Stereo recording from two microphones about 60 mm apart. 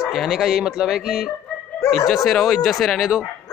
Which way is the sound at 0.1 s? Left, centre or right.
Centre.